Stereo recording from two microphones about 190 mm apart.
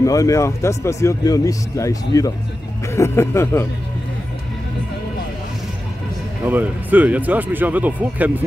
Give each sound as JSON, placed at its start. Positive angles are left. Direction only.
{"t": 0.0, "sound": "speech", "side_deg": 15}
{"t": 6.4, "sound": "speech", "side_deg": -10}